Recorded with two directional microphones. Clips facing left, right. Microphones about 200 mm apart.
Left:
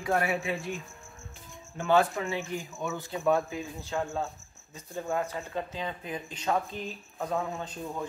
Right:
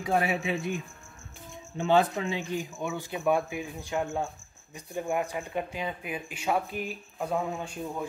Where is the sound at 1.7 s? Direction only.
20° right (ahead or behind).